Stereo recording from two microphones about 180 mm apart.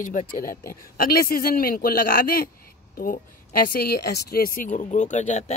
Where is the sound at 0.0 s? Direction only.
45° left (ahead or behind).